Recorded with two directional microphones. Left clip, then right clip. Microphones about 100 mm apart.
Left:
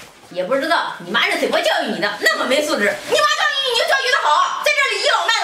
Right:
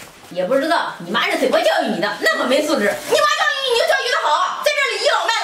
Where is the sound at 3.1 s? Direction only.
Centre (ahead or behind).